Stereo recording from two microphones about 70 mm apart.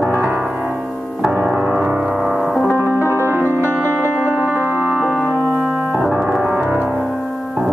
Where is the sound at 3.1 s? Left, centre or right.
Right.